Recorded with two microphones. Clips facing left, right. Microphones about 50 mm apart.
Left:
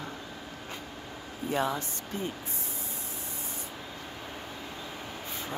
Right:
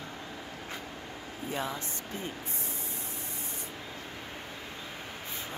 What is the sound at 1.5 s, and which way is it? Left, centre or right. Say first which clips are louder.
Speech: left 6 dB; left.